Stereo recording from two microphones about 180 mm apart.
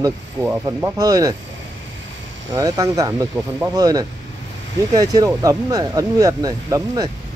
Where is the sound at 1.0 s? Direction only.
20° right (ahead or behind).